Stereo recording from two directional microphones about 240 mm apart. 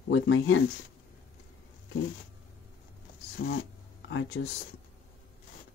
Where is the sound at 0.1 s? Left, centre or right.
Left.